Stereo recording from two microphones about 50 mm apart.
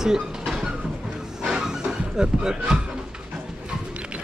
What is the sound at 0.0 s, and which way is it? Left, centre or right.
Train, centre.